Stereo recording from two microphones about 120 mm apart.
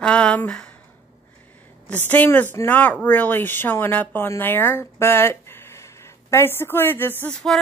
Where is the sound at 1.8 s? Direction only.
15° left (ahead or behind).